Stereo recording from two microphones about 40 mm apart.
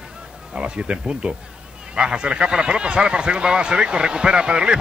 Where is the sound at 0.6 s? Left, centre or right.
Right.